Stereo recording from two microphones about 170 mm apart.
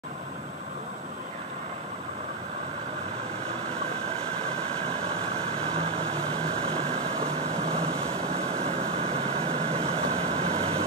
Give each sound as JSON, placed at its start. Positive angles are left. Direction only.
{"t": 5.9, "sound": "vehicle", "side_deg": -35}